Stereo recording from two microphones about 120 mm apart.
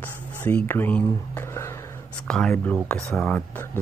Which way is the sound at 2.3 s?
5° left (ahead or behind).